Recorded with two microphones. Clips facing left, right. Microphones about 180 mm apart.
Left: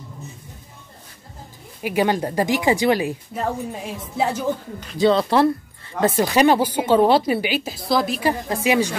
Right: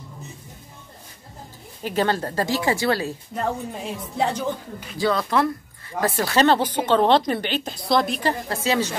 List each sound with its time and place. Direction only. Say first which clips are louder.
1.8 s speech: left 3 dB; 10° left (ahead or behind)
3.3 s a woman's voice: even; 5° left (ahead or behind)
4.9 s speech: left 5 dB; 25° left (ahead or behind)